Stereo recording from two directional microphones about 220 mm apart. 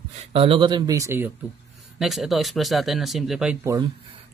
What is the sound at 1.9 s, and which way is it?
Speech, centre (ahead or behind).